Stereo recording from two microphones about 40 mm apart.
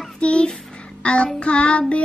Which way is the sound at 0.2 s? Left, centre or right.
Left.